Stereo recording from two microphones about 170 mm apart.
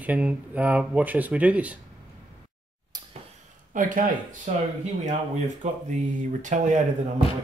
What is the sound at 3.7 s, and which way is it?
Speech, 50° right (ahead or behind).